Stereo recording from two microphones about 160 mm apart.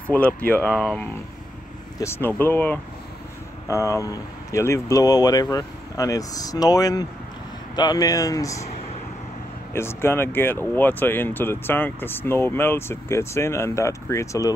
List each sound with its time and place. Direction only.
0.1 s speech: 10° left (ahead or behind)
9.8 s speech: 15° left (ahead or behind)